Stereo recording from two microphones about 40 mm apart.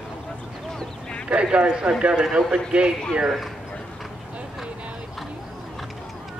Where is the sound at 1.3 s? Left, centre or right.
Right.